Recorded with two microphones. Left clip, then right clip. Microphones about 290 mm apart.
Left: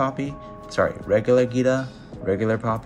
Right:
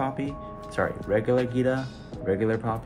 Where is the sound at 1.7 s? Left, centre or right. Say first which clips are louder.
Left 5 dB; centre.